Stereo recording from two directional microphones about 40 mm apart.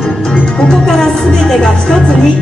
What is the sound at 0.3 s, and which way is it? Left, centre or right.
Speech, centre.